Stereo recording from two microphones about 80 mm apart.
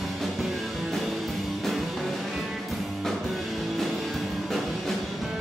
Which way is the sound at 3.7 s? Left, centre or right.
Centre.